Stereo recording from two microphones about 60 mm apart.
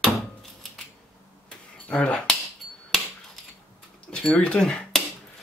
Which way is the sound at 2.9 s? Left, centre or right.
Centre.